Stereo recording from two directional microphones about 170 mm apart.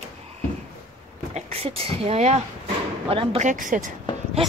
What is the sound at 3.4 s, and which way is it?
Speech, 50° right (ahead or behind).